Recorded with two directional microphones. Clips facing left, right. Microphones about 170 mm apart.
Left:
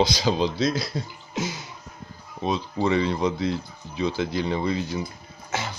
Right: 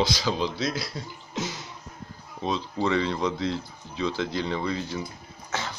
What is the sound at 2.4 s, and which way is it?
Speech, 10° left (ahead or behind).